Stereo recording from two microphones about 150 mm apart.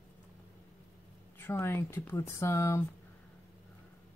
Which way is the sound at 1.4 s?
15° left (ahead or behind).